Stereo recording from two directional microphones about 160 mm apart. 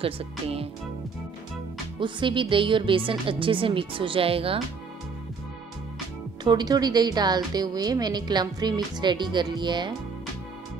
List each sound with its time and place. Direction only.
0.0 s speech: 35° right (ahead or behind)
2.0 s speech: 30° right (ahead or behind)
6.4 s speech: 25° right (ahead or behind)